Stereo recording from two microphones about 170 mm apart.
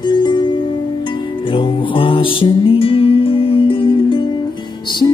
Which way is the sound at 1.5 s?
30° left (ahead or behind).